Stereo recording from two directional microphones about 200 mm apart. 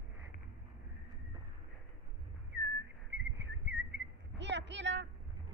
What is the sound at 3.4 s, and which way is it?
Whistling, 65° right (ahead or behind).